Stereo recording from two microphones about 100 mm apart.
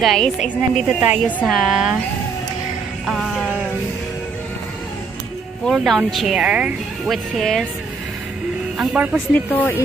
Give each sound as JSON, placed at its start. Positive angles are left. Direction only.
{"t": 0.0, "sound": "speech", "side_deg": 0}
{"t": 3.1, "sound": "speech", "side_deg": 0}
{"t": 5.7, "sound": "speech", "side_deg": 0}
{"t": 7.1, "sound": "speech", "side_deg": 0}
{"t": 8.7, "sound": "speech", "side_deg": -15}
{"t": 9.3, "sound": "speech", "side_deg": 15}